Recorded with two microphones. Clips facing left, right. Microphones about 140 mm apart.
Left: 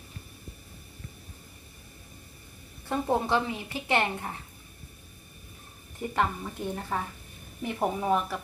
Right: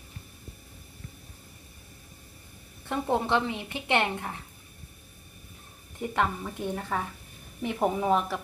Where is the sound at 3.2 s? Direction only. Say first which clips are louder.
Right 1 dB; 20° right (ahead or behind).